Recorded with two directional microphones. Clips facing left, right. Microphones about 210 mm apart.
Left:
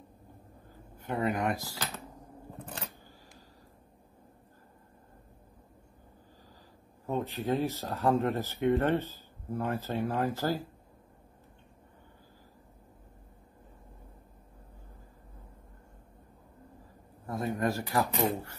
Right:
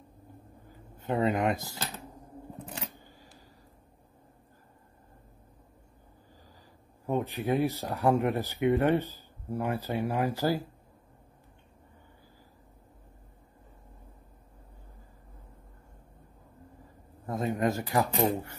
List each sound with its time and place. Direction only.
1.0 s speech: 25° right (ahead or behind)
7.1 s speech: 15° right (ahead or behind)
17.3 s speech: 20° right (ahead or behind)